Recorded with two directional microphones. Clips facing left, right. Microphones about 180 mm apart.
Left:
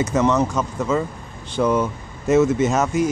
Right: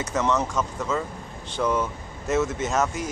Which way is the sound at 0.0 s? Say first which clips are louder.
Left 6 dB; 5° left (ahead or behind).